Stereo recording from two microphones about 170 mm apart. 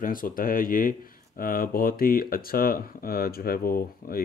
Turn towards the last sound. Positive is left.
turn(degrees=60)  # may be behind; listen again after turning